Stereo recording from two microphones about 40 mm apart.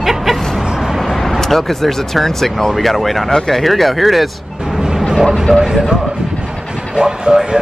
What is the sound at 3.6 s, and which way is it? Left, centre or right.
Speech, centre.